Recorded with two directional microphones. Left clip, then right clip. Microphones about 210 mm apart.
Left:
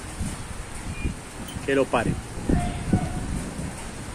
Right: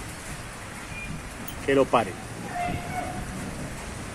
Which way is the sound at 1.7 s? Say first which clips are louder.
Right 1 dB; 5° left (ahead or behind).